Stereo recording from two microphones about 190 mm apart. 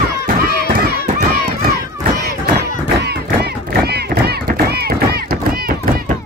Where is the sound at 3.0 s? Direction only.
55° right (ahead or behind).